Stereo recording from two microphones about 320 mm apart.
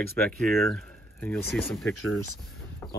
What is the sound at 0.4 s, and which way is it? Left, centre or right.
Speech, centre.